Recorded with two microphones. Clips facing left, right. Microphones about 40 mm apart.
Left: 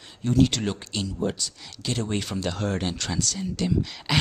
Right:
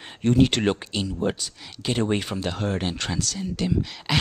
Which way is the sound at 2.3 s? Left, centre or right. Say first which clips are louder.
Right 1 dB; centre.